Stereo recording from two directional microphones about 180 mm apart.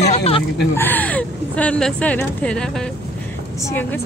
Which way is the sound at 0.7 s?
10° left (ahead or behind).